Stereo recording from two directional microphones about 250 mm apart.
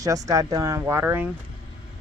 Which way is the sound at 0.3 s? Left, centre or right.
Centre.